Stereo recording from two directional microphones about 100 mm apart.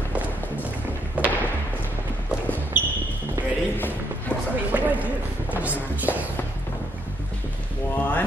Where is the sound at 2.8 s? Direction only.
15° right (ahead or behind).